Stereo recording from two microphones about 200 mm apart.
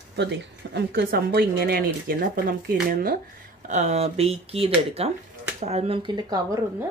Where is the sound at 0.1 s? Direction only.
60° right (ahead or behind); by 6.9 s 20° right (ahead or behind).